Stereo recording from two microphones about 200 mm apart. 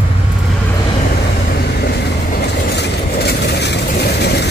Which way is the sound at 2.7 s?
55° left (ahead or behind).